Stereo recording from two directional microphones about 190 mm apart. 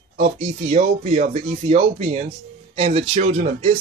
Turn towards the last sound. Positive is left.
turn(degrees=-40)  # may be behind; listen again after turning